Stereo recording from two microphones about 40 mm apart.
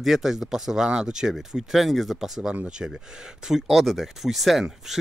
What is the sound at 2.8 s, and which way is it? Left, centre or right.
Speech, right.